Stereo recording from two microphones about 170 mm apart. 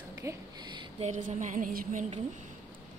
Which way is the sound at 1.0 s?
45° right (ahead or behind).